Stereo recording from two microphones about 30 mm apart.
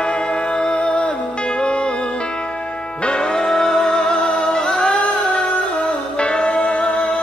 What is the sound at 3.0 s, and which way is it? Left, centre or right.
Music, left.